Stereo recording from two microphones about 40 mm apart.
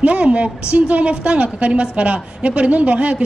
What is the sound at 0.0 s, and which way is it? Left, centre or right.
A woman's voice, right.